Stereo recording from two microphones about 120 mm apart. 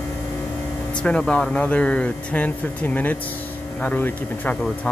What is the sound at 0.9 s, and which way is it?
Speech, 10° left (ahead or behind).